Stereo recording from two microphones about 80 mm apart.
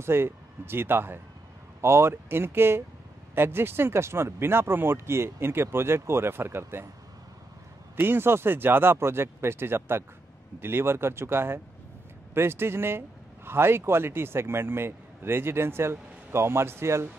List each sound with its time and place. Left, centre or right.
0.0 s speech: right
7.9 s speech: right